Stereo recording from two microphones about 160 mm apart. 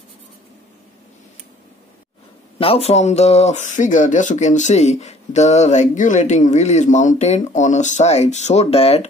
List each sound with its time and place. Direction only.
2.6 s speech: 40° left (ahead or behind)